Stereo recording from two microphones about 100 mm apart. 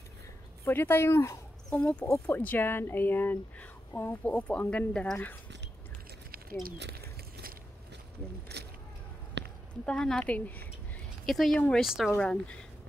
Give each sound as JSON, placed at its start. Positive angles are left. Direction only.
{"t": 0.7, "sound": "speech", "side_deg": 20}
{"t": 1.7, "sound": "speech", "side_deg": 5}
{"t": 2.2, "sound": "speech", "side_deg": 20}
{"t": 9.8, "sound": "speech", "side_deg": 5}
{"t": 11.2, "sound": "speech", "side_deg": 0}